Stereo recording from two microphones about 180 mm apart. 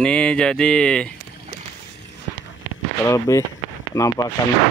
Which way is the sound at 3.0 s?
15° left (ahead or behind).